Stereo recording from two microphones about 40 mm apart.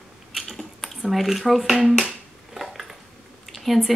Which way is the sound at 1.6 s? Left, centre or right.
Centre.